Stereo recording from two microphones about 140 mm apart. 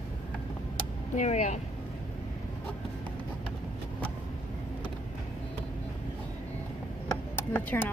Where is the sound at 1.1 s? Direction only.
55° left (ahead or behind).